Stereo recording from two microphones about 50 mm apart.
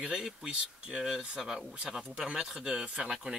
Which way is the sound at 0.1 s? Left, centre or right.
Centre.